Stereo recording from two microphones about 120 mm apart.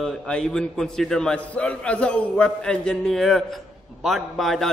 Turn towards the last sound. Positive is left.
turn(degrees=0)  # may be behind; listen again after turning